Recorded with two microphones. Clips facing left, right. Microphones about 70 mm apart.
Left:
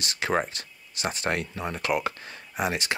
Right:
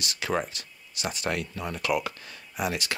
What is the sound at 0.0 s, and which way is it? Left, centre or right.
Speech, left.